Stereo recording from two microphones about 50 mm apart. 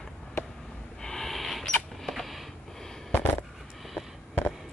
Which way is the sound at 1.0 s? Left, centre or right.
Centre.